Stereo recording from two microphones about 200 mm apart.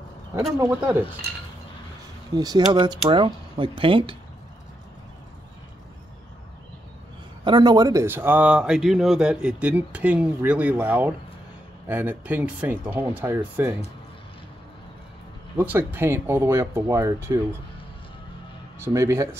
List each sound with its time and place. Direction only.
0.6 s speech: 10° right (ahead or behind)
2.3 s speech: 20° right (ahead or behind)
7.4 s speech: 20° right (ahead or behind)
15.5 s speech: 10° right (ahead or behind)
18.8 s speech: 15° right (ahead or behind)